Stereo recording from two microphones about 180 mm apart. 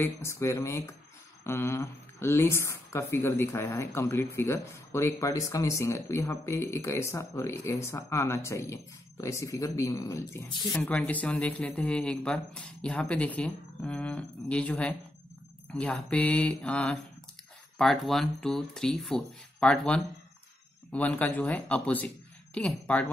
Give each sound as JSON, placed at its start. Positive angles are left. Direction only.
{"t": 0.0, "sound": "speech", "side_deg": 15}
{"t": 10.7, "sound": "speech", "side_deg": 5}